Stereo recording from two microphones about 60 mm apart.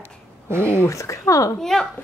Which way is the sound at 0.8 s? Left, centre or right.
Left.